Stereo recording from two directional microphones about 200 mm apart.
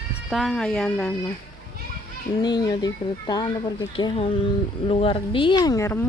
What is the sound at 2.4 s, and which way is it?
Speech, 20° left (ahead or behind).